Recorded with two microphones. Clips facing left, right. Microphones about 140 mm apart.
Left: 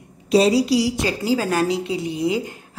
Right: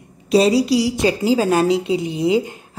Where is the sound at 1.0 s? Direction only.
20° right (ahead or behind).